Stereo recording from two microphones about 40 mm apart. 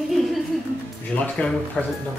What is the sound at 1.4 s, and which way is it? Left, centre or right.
Speech, left.